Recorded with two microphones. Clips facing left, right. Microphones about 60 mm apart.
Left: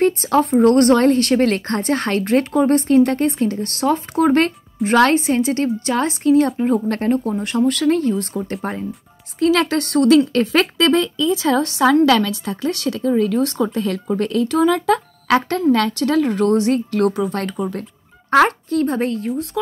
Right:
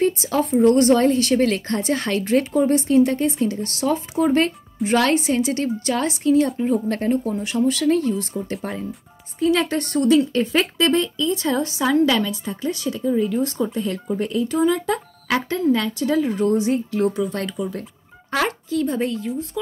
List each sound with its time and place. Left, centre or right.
0.0 s speech: left
4.8 s a woman's voice: left
8.3 s speech: left
9.4 s a woman's voice: left
17.3 s speech: left